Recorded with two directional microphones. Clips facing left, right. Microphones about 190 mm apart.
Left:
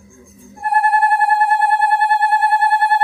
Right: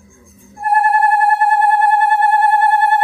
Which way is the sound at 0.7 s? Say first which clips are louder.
Right 2 dB; 45° right (ahead or behind).